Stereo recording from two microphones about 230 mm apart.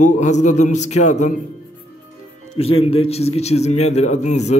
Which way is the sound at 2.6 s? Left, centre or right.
Left.